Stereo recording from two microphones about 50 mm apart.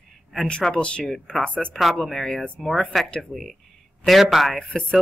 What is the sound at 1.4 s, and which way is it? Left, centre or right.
Speech, left.